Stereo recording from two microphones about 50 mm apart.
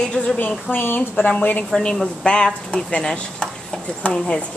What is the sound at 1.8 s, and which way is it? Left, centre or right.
A woman's voice, centre.